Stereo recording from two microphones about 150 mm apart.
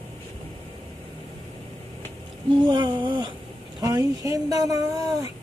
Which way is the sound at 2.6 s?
30° right (ahead or behind).